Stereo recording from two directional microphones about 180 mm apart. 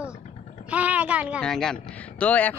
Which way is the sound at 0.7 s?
10° right (ahead or behind).